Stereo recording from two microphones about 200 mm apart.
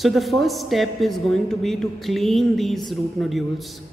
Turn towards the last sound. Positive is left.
turn(degrees=0)  # may be behind; listen again after turning